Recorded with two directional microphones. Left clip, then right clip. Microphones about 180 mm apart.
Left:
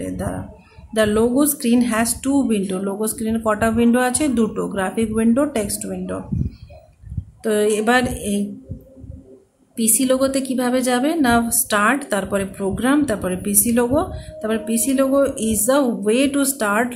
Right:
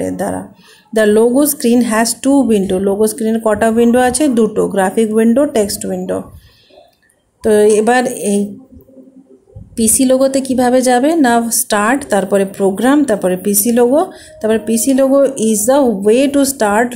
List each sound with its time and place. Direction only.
0.0 s a sound: 25° right (ahead or behind)
0.9 s a woman's voice: 25° right (ahead or behind)
7.4 s a woman's voice: 20° right (ahead or behind)
9.8 s a woman's voice: 25° right (ahead or behind)